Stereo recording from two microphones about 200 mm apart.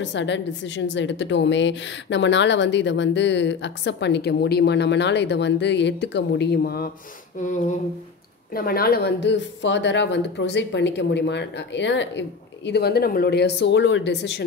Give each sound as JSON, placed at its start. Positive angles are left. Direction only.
{"t": 0.0, "sound": "a woman's voice", "side_deg": 65}
{"t": 7.3, "sound": "a sound", "side_deg": 40}
{"t": 8.5, "sound": "a woman's voice", "side_deg": 50}